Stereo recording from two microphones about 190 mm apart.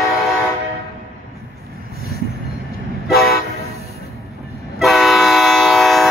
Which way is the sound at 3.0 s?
Centre (ahead or behind).